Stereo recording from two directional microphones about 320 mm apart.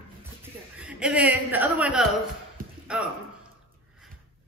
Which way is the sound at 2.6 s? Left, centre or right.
Right.